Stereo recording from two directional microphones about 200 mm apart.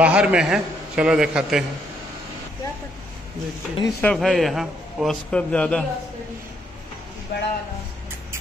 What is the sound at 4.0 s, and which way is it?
A man's voice, centre (ahead or behind).